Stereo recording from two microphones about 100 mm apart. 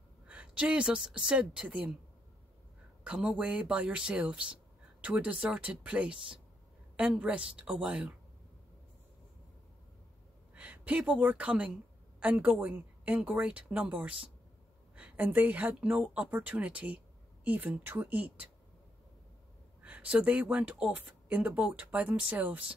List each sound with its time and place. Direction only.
0.3 s speech: 15° right (ahead or behind)
3.0 s speech: 10° right (ahead or behind)
10.5 s speech: 15° right (ahead or behind)
19.8 s speech: 15° right (ahead or behind)